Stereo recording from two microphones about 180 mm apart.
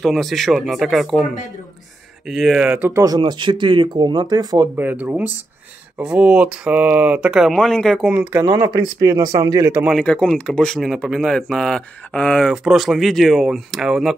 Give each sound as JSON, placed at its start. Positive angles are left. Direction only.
{"t": 0.0, "sound": "speech", "side_deg": 0}
{"t": 4.8, "sound": "speech", "side_deg": -10}
{"t": 8.1, "sound": "speech", "side_deg": -10}
{"t": 9.8, "sound": "speech", "side_deg": 5}